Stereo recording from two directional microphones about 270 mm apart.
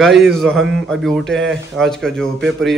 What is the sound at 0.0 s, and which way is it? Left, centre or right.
A man's voice, centre.